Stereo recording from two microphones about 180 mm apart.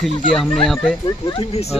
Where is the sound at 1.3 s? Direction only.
35° left (ahead or behind).